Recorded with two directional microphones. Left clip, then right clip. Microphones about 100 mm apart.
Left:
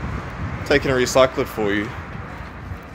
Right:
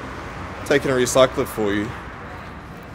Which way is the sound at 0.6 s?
20° right (ahead or behind).